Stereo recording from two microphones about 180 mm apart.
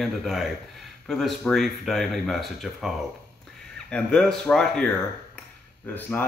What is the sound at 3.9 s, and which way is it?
Speech, 5° left (ahead or behind).